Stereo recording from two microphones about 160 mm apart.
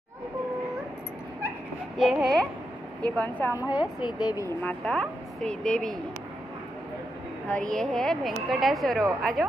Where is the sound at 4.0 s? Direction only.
25° left (ahead or behind).